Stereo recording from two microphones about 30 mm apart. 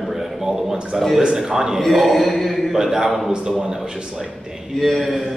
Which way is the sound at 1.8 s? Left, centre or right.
Centre.